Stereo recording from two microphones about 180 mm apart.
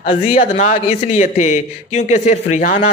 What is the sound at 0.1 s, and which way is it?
A man's voice, 30° left (ahead or behind).